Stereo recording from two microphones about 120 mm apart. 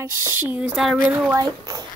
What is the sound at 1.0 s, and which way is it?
Speech, 15° right (ahead or behind).